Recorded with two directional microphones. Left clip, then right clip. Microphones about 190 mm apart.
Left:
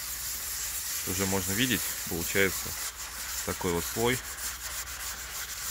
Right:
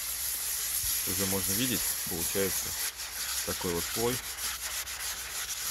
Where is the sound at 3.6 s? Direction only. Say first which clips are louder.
Left 3 dB; 15° left (ahead or behind).